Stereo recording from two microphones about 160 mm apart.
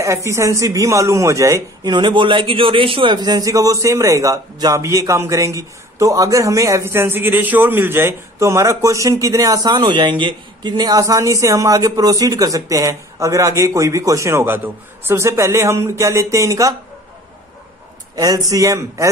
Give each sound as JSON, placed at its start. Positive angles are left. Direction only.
{"t": 0.0, "sound": "a man's voice", "side_deg": -20}
{"t": 2.0, "sound": "a man's voice", "side_deg": -30}
{"t": 18.1, "sound": "a man's voice", "side_deg": -25}